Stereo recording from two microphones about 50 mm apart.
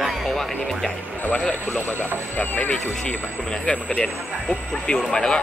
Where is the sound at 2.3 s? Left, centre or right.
Left.